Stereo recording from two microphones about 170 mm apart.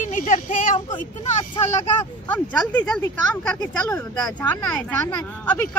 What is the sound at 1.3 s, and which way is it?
Speech, 40° left (ahead or behind).